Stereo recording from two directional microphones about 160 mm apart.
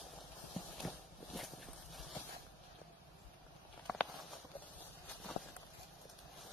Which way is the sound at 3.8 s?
5° left (ahead or behind).